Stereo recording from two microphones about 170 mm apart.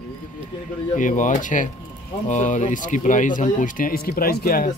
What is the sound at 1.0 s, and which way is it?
Speech, 50° left (ahead or behind).